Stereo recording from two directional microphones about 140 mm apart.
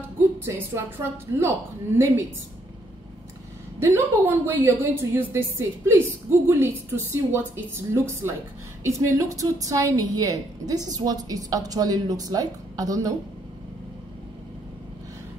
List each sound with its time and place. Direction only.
0.5 s a woman's voice: 20° right (ahead or behind)
3.8 s a woman's voice: 15° right (ahead or behind)